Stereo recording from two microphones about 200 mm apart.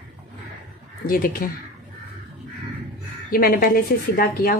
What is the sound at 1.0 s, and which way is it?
Speech, 45° left (ahead or behind).